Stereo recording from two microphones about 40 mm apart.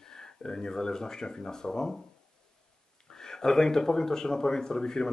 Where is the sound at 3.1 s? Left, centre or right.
Centre.